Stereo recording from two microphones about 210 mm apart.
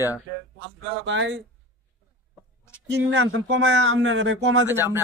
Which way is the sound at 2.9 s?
55° right (ahead or behind).